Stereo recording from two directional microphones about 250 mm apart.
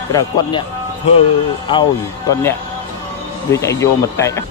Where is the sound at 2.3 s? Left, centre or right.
Centre.